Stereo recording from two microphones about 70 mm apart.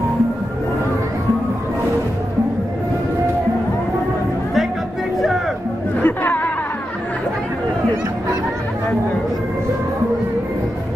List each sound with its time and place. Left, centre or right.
6.0 s chatter: left